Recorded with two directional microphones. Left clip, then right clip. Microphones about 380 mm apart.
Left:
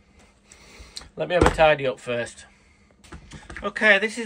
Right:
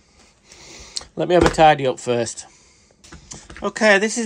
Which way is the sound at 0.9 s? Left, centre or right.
Centre.